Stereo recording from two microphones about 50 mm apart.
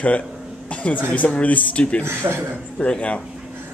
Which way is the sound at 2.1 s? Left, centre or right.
Right.